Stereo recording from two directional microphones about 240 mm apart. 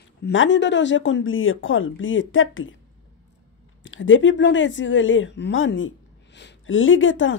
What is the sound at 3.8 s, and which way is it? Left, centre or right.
A woman's voice, left.